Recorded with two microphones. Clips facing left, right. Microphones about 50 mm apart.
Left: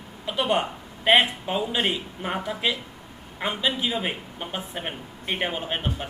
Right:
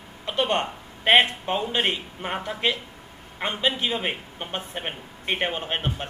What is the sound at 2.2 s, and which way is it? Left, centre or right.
Speech, centre.